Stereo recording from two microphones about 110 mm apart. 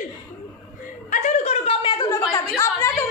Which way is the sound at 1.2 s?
90° left.